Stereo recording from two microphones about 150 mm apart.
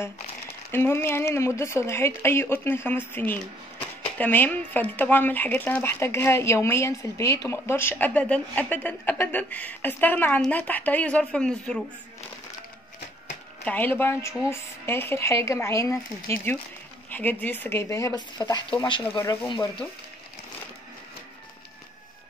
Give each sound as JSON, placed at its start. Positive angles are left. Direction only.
{"t": 0.7, "sound": "speech", "side_deg": 15}
{"t": 13.7, "sound": "speech", "side_deg": 10}